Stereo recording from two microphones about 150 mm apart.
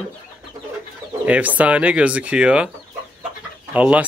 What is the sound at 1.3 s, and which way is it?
Speech, 10° right (ahead or behind).